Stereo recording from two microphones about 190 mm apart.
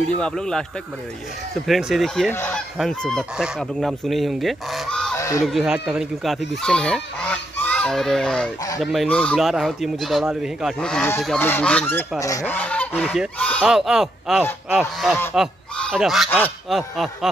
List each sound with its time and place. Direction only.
0.2 s speech: 5° left (ahead or behind)
1.7 s speech: centre (ahead or behind)
2.3 s goose: 10° left (ahead or behind)
2.8 s speech: 5° left (ahead or behind)
5.1 s honk: 15° left (ahead or behind)
5.4 s speech: centre (ahead or behind)
6.6 s goose: 5° left (ahead or behind)
8.7 s speech: centre (ahead or behind)
11.2 s goose: 10° left (ahead or behind)
12.2 s speech: 15° left (ahead or behind); by 17.3 s centre (ahead or behind)